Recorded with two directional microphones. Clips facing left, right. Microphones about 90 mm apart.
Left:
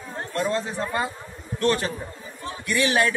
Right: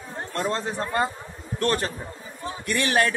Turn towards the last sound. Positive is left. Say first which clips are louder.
# left 1 dB
turn(degrees=-45)  # may be behind; listen again after turning